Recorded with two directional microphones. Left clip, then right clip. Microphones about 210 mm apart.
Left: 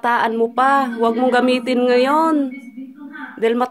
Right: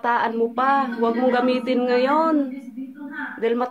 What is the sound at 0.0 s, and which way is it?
Speech, 50° left (ahead or behind).